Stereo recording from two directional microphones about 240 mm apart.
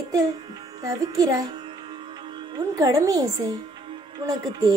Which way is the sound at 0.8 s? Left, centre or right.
Centre.